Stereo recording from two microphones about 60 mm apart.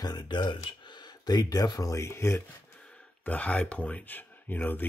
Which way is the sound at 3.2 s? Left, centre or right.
Left.